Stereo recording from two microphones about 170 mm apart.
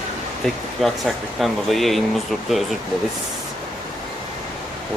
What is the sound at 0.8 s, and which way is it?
Speech, centre (ahead or behind).